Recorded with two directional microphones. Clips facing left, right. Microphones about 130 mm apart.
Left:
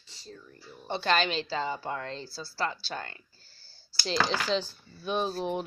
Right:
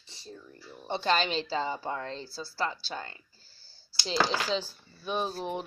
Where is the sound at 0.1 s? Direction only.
20° right (ahead or behind).